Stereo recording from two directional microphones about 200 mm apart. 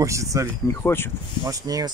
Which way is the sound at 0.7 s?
10° left (ahead or behind).